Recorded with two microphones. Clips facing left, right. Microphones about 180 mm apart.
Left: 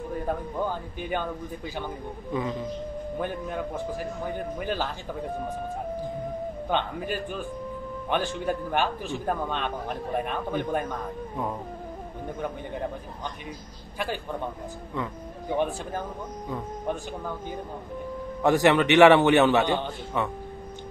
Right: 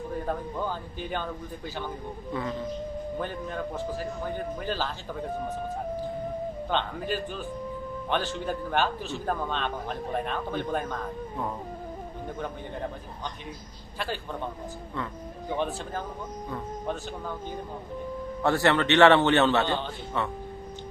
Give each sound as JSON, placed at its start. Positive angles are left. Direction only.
{"t": 0.6, "sound": "a man's voice", "side_deg": 15}
{"t": 2.3, "sound": "a man's voice", "side_deg": 15}
{"t": 6.7, "sound": "a man's voice", "side_deg": 10}
{"t": 15.5, "sound": "a man's voice", "side_deg": 15}
{"t": 18.4, "sound": "a man's voice", "side_deg": 15}